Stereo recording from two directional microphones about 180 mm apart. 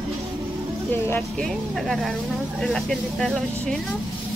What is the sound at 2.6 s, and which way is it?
Speech, centre (ahead or behind).